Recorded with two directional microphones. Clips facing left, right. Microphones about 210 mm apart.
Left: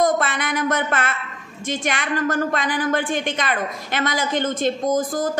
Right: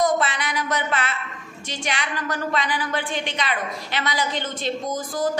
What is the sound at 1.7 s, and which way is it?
A woman's voice, 50° left (ahead or behind).